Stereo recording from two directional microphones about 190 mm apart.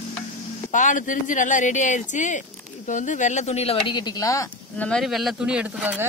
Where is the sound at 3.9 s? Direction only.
20° left (ahead or behind).